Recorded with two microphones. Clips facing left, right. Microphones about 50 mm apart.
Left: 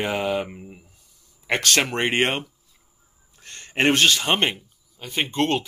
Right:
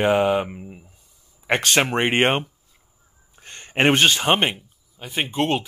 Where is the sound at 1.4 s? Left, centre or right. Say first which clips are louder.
Right 2 dB; centre.